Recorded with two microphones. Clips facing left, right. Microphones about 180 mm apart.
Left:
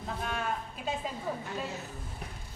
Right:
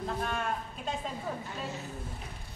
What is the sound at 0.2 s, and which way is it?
Speech, centre (ahead or behind).